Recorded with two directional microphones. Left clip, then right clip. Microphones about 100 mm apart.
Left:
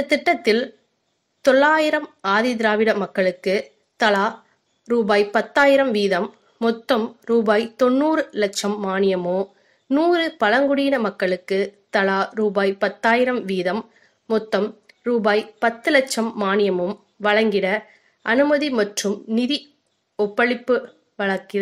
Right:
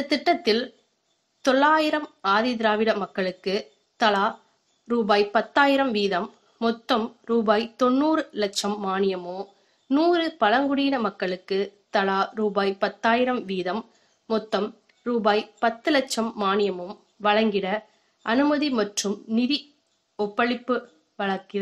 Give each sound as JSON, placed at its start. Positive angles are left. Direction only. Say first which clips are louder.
{"t": 0.0, "sound": "speech", "louder": "left 4 dB", "side_deg": 40}